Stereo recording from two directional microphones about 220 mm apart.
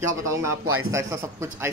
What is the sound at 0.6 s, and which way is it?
Speech, 75° right (ahead or behind).